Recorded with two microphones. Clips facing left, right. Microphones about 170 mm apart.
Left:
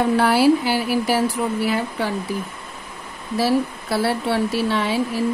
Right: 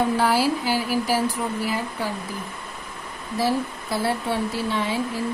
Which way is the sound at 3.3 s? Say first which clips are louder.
Left 4 dB; 80° left.